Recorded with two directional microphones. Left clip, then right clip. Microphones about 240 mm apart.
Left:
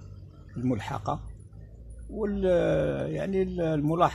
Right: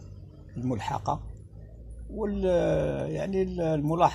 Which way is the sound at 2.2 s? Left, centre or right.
Left.